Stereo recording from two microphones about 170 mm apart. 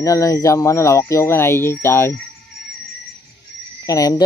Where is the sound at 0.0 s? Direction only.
20° left (ahead or behind).